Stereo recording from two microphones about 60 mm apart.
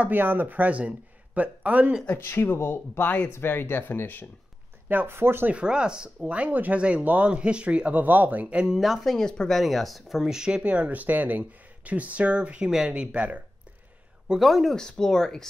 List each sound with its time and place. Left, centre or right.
0.0 s speech: right
2.1 s speech: left
4.8 s speech: right
5.5 s speech: centre
8.6 s speech: centre
10.2 s speech: centre
10.6 s speech: right
14.4 s speech: centre
14.8 s speech: centre